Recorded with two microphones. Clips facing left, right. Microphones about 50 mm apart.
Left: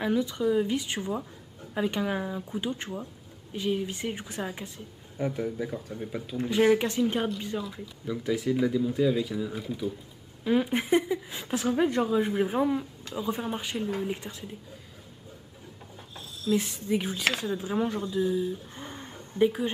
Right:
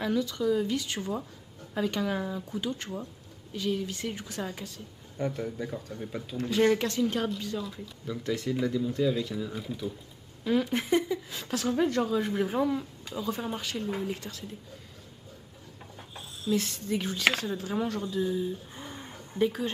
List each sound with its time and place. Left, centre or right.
0.0 s speech: left
5.1 s speech: centre
7.6 s speech: centre
10.4 s speech: centre
16.2 s a sound: centre
16.5 s speech: centre
18.8 s a sound: centre